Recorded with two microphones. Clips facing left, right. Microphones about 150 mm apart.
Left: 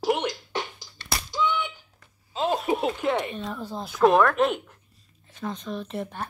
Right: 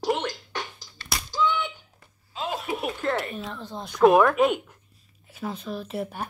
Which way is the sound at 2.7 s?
25° left (ahead or behind).